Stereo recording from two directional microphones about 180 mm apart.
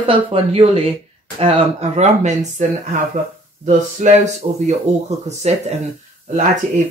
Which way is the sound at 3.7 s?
40° right (ahead or behind).